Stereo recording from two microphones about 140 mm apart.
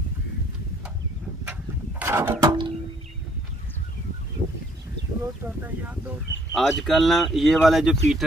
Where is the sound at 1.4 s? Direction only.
10° right (ahead or behind).